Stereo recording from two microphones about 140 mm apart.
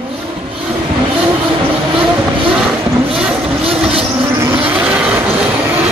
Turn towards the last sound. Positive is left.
turn(degrees=-10)  # may be behind; listen again after turning